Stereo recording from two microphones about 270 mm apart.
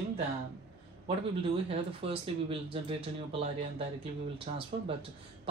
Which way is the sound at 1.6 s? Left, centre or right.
Centre.